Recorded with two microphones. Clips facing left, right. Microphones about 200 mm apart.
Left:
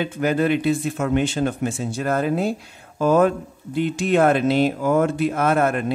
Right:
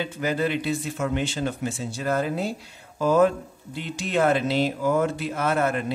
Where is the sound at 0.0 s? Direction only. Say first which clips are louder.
Left 5 dB; 55° left (ahead or behind).